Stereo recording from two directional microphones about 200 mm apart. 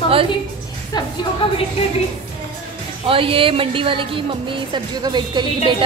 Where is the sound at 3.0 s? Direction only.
25° right (ahead or behind).